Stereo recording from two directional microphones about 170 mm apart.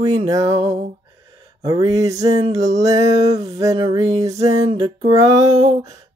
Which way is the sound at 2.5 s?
40° right (ahead or behind).